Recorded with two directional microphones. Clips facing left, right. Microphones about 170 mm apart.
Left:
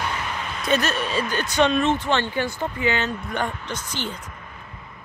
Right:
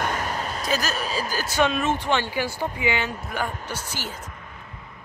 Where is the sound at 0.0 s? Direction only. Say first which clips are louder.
Right 2 dB; 45° right (ahead or behind).